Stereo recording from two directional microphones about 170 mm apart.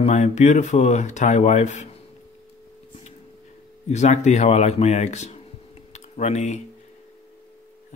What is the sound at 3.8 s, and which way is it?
A man's voice, 45° left (ahead or behind).